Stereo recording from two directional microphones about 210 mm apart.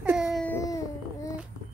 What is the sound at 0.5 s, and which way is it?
Baby cry, 15° left (ahead or behind).